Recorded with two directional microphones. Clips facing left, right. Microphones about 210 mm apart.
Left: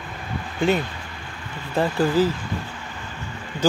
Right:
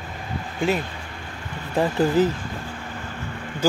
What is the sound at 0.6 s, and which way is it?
Speech, centre (ahead or behind).